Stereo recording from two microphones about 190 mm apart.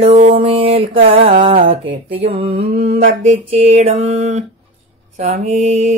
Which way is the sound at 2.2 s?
30° right (ahead or behind).